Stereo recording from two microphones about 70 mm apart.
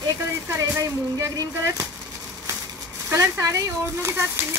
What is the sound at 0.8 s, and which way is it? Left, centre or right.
Speech, right.